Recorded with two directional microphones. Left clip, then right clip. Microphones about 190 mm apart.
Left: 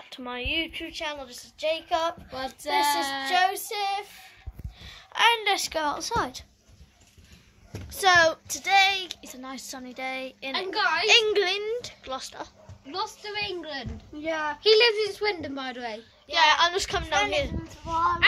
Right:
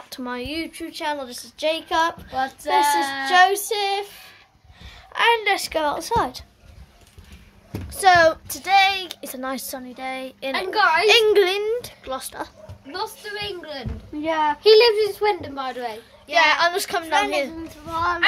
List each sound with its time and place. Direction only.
0.1 s a woman's voice: 15° right (ahead or behind)
2.3 s child singing: 20° left (ahead or behind)
3.3 s a woman's voice: 20° right (ahead or behind)
4.8 s speech: centre (ahead or behind)
7.9 s speech: 5° right (ahead or behind)
9.2 s speech: 45° right (ahead or behind)
9.9 s speech: centre (ahead or behind)
10.7 s a woman's voice: 40° right (ahead or behind)
11.1 s a child's voice: 10° right (ahead or behind); by 16.0 s 15° left (ahead or behind)
16.3 s speech: 5° right (ahead or behind)